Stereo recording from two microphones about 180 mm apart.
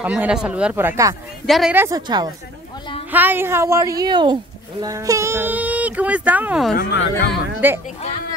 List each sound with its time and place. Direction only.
0.0 s speech: 10° right (ahead or behind)
1.4 s a woman's voice: centre (ahead or behind)
1.8 s a woman's voice: 20° right (ahead or behind)
3.1 s speech: 10° right (ahead or behind)
6.7 s speech: 55° left (ahead or behind)
7.6 s speech: 10° right (ahead or behind)